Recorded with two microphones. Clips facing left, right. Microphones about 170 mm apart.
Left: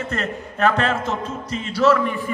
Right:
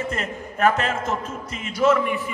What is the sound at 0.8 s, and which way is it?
Music, 30° left (ahead or behind).